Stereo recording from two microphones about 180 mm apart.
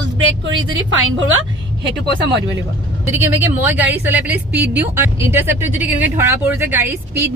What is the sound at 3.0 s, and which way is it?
A woman's voice, 10° right (ahead or behind).